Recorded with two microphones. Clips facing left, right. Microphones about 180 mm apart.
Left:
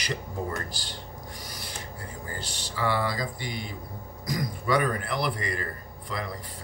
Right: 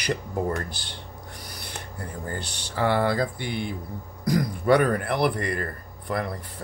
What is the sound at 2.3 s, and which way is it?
A man's voice, 55° right (ahead or behind).